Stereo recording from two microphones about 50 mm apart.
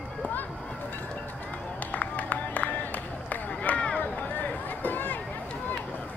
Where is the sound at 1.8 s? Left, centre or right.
Left.